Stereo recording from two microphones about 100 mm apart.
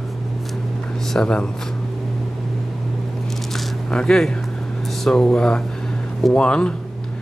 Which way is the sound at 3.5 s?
5° left (ahead or behind).